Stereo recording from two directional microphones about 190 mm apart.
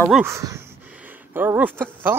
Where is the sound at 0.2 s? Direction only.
15° right (ahead or behind).